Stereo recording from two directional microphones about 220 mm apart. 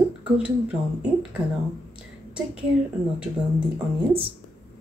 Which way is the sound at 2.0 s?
5° right (ahead or behind).